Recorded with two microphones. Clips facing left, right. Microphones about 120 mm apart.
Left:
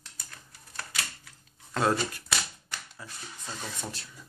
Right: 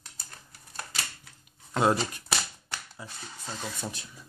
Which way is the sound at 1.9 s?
30° right (ahead or behind).